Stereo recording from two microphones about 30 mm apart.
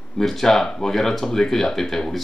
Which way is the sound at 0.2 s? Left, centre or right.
Centre.